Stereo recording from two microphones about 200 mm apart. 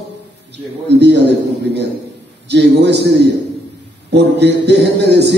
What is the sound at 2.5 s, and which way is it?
A man's voice, 60° right (ahead or behind).